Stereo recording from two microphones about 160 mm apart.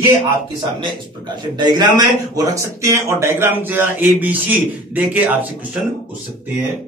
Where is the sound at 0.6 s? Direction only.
30° right (ahead or behind); by 6.5 s 10° right (ahead or behind).